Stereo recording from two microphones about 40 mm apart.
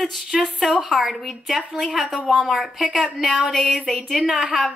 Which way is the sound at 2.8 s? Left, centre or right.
Centre.